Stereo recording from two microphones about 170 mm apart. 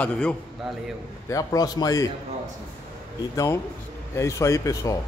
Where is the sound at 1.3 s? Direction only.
20° left (ahead or behind).